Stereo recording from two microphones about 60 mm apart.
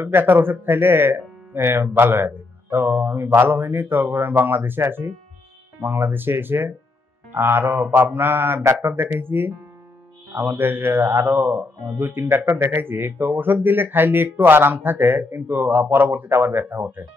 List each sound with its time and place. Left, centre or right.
0.0 s a man's voice: right